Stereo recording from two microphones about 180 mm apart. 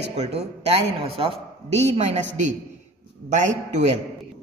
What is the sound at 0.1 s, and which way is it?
A woman's voice, 35° right (ahead or behind).